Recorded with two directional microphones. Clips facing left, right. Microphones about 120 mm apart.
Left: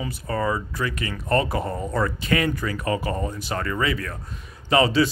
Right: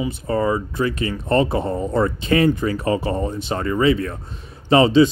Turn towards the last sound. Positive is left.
turn(degrees=-25)  # may be behind; listen again after turning